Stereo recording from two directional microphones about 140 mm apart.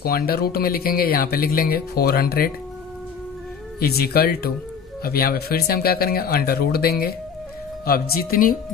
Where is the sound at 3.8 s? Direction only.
90° left.